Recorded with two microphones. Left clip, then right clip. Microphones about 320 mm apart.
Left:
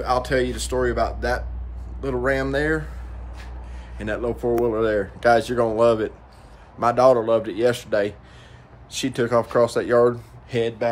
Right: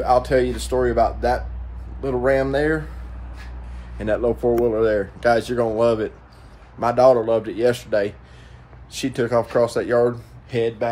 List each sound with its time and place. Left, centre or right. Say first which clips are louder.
0.0 s speech: right 4 dB; centre
4.0 s speech: right 5 dB; centre